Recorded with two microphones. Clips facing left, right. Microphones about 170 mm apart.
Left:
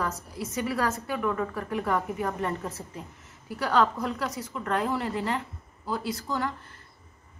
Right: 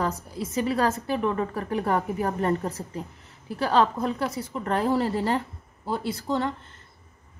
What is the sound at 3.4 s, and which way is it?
A woman's voice, 25° right (ahead or behind).